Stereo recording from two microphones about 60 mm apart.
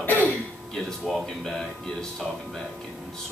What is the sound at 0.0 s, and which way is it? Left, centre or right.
Throat clearing, left.